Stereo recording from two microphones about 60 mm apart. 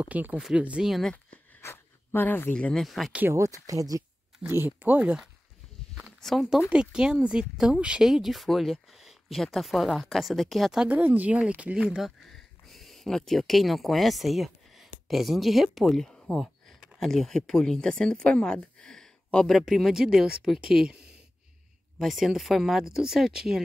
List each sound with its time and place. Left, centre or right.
0.0 s speech: right
1.6 s a sound: left
2.5 s speech: centre
2.8 s speech: centre
3.3 s speech: right
4.5 s speech: right
4.7 s speech: right
6.2 s speech: centre
6.7 s speech: centre
8.1 s speech: centre
10.8 s speech: right
12.3 s speech: centre
19.6 s speech: centre